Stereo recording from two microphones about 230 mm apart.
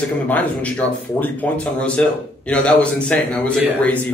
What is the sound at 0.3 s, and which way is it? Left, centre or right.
Speech, centre.